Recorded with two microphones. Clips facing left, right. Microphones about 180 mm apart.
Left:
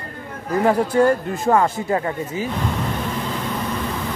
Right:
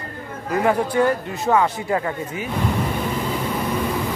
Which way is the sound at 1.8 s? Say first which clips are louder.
Left 1 dB; 30° left (ahead or behind).